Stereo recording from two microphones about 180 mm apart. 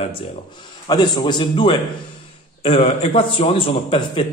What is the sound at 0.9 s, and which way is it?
A man's voice, 25° left (ahead or behind).